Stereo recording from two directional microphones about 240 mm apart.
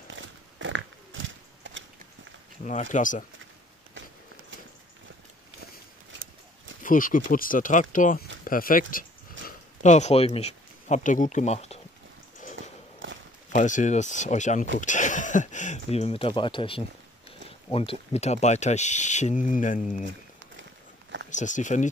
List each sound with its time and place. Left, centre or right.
0.1 s biting: right
2.6 s speech: left
6.8 s speech: left
9.4 s a sound: right
9.8 s speech: left
12.4 s a sound: left
13.0 s walk: right
13.5 s speech: left
21.3 s speech: left